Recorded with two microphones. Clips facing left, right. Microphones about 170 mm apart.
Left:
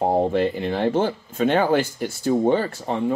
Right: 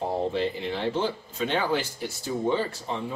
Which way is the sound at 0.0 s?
55° left (ahead or behind).